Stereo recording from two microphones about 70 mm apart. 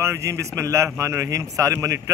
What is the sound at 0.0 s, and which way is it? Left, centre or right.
A man's voice, right.